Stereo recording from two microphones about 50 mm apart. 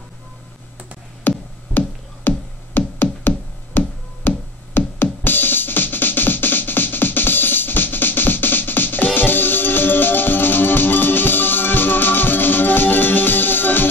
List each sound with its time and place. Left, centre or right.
1.2 s music: left